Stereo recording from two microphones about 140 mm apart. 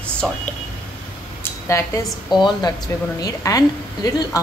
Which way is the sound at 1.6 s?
20° left (ahead or behind).